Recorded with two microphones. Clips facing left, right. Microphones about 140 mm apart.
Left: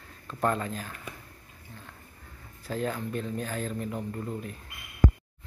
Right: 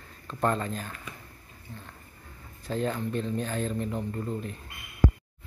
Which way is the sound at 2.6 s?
5° left (ahead or behind).